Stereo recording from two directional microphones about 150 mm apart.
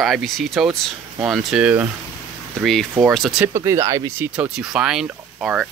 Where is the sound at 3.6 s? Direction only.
20° right (ahead or behind).